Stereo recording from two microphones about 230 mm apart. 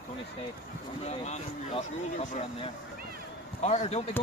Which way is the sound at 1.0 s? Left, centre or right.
Left.